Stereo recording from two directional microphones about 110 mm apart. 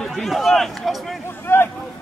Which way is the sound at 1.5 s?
20° left (ahead or behind).